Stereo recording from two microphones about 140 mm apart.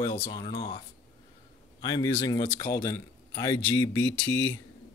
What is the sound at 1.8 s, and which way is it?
Speech, 35° left (ahead or behind).